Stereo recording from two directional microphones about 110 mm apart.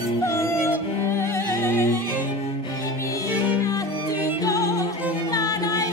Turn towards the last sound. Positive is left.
turn(degrees=35)  # may be behind; listen again after turning